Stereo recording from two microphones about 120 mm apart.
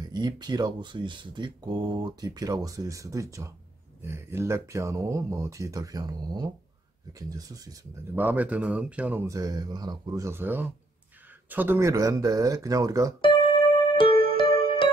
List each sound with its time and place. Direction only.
0.0 s speech: 35° right (ahead or behind)
8.1 s speech: 15° right (ahead or behind)
9.2 s speech: 30° right (ahead or behind)
13.9 s music: 45° left (ahead or behind)